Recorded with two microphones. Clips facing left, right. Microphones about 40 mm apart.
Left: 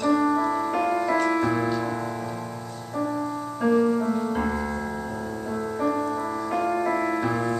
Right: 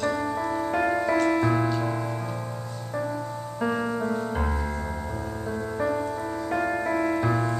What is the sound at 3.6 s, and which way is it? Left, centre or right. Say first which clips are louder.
Music: left 6 dB; centre.